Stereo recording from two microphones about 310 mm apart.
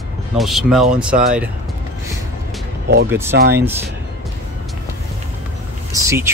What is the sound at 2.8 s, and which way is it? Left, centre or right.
Speech, right.